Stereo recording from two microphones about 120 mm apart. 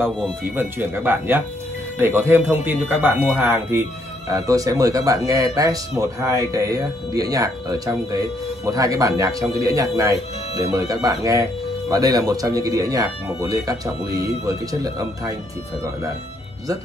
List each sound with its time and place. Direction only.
0.4 s speech: 20° right (ahead or behind)
4.3 s speech: 30° right (ahead or behind)